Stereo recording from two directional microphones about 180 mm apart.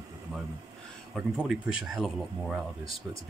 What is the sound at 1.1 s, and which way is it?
Speech, centre (ahead or behind).